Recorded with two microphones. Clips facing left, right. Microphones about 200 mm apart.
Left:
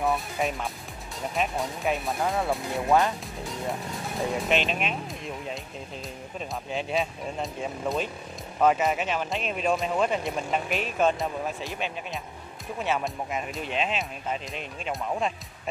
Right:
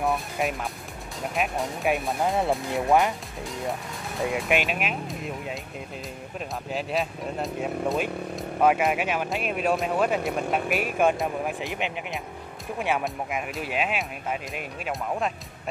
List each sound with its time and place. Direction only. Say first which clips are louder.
0.0 s music: right 1 dB; centre (ahead or behind)
1.3 s speech: right 1 dB; 5° right (ahead or behind)
2.2 s speech: right 3 dB; 25° right (ahead or behind)
4.5 s speech: right 1 dB; 10° right (ahead or behind)
6.7 s speech: even; centre (ahead or behind)